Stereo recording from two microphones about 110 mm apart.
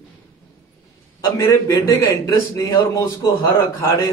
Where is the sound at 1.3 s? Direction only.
30° left (ahead or behind).